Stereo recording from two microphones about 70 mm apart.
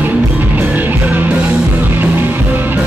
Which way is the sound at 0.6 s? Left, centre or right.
Right.